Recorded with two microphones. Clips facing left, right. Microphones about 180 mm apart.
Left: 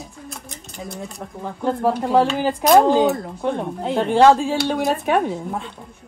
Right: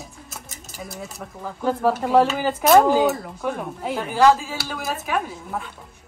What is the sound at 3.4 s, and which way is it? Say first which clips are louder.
Speech: left 4 dB; 25° left (ahead or behind).